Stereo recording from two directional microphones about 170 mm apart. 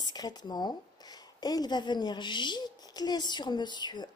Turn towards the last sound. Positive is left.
turn(degrees=25)  # may be behind; listen again after turning